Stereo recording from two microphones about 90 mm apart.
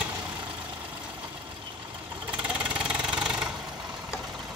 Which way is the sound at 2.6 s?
10° right (ahead or behind).